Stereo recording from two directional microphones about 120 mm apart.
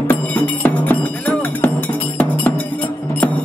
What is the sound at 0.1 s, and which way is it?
Music, 15° left (ahead or behind).